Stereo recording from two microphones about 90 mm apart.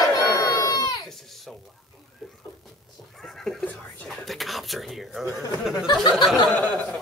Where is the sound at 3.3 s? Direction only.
5° left (ahead or behind).